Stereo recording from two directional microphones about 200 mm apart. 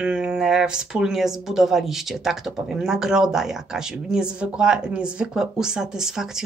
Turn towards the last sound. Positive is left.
turn(degrees=0)  # may be behind; listen again after turning